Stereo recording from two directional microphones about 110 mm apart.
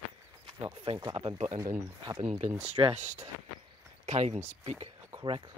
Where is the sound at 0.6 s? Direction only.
50° right (ahead or behind).